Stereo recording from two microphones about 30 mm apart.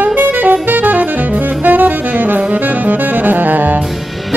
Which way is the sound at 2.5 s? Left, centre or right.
Right.